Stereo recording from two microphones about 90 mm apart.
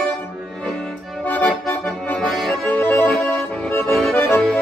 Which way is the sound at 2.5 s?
20° left (ahead or behind).